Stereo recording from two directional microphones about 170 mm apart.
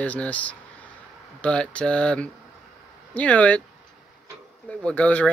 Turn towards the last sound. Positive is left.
turn(degrees=5)  # may be behind; listen again after turning